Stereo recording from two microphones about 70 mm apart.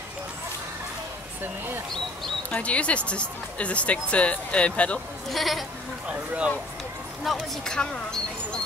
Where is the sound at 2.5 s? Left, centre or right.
Centre.